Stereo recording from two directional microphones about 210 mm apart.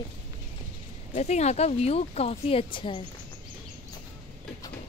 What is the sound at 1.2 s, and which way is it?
Speech, 30° left (ahead or behind).